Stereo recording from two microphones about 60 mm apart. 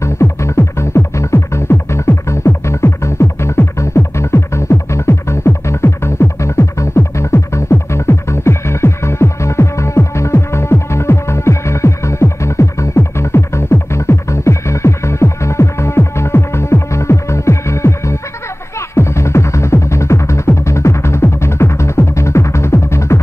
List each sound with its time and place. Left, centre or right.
0.0 s music: left